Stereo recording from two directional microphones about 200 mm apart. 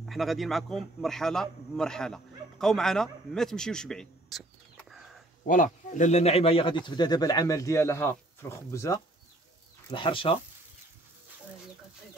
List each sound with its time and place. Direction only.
0.0 s a man's voice: centre (ahead or behind)
5.5 s speech: 40° left (ahead or behind); by 9.0 s 15° left (ahead or behind)
9.8 s speech: 25° left (ahead or behind)